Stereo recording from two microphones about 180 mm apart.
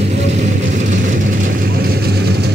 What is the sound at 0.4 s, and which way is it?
Vehicle, 45° right (ahead or behind).